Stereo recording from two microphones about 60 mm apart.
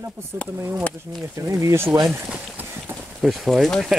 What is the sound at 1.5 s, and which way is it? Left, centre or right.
Speech, right.